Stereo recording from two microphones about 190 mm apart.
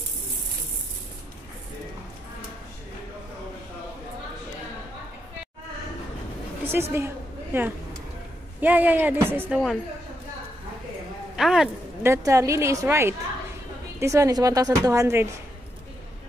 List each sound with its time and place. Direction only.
6.6 s a woman's voice: 10° right (ahead or behind)
11.3 s a woman's voice: centre (ahead or behind)
12.0 s a woman's voice: 15° right (ahead or behind)